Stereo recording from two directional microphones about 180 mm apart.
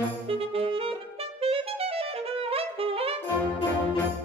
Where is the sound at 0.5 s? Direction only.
30° right (ahead or behind).